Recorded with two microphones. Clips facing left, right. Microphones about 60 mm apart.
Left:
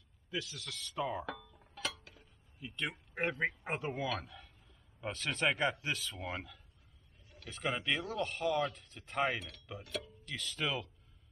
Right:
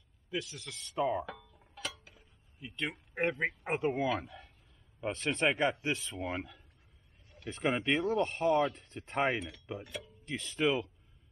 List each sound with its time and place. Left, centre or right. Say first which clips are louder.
0.4 s speech: left 1 dB; right
3.9 s speech: right 5 dB; right